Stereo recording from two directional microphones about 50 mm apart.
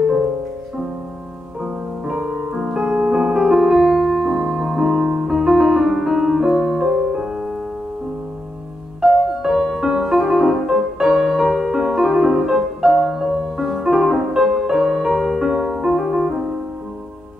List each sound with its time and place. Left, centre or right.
1.6 s music: centre
2.7 s piano: centre
6.5 s music: centre
9.0 s music: centre